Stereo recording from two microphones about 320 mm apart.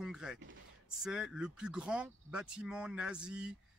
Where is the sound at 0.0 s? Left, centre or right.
Centre.